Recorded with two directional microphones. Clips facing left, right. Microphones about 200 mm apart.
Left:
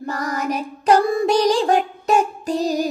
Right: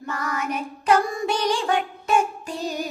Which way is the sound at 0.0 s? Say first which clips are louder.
Left 4 dB; 35° left (ahead or behind).